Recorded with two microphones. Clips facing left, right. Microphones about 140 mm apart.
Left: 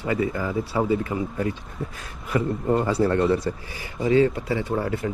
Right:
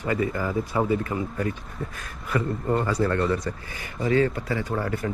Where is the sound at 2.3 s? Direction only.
30° left (ahead or behind).